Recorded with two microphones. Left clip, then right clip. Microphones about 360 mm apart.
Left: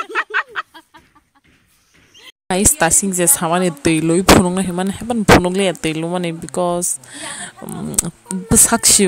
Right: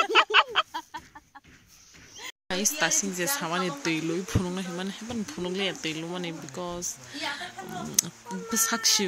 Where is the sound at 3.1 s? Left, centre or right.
Left.